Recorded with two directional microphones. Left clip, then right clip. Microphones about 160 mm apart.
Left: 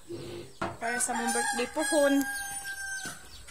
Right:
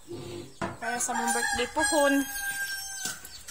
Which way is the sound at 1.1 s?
20° left (ahead or behind).